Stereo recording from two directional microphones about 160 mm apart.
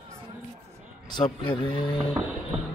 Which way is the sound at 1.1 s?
30° left (ahead or behind).